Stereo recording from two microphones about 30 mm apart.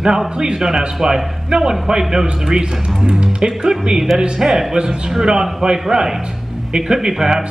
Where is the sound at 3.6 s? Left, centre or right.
Right.